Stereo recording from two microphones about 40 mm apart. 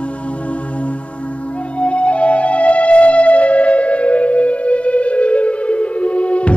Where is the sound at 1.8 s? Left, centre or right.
Left.